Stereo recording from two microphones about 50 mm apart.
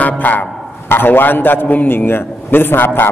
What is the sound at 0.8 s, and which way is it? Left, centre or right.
A man's voice, left.